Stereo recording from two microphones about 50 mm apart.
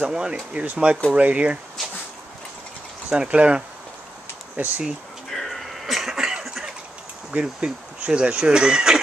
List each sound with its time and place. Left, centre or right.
0.0 s speech: centre
3.1 s speech: right
4.6 s speech: right
5.3 s a sound: centre
7.2 s speech: centre